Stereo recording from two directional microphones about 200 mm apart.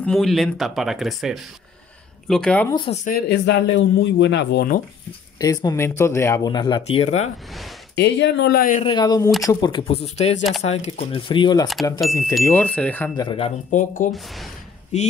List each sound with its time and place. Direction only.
0.0 s speech: centre (ahead or behind)
2.7 s speech: 25° left (ahead or behind)
3.1 s speech: 50° left (ahead or behind)
5.4 s speech: 20° left (ahead or behind)
7.9 s speech: 60° left (ahead or behind)
8.8 s speech: 20° left (ahead or behind)
13.1 s speech: 25° left (ahead or behind)
13.7 s speech: 40° left (ahead or behind)
14.1 s speech: centre (ahead or behind)
14.9 s speech: 35° left (ahead or behind)